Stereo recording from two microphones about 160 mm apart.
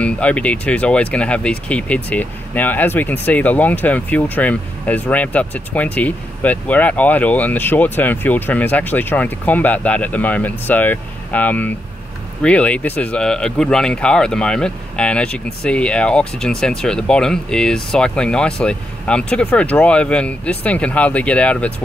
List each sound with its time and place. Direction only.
0.0 s speech: 10° left (ahead or behind)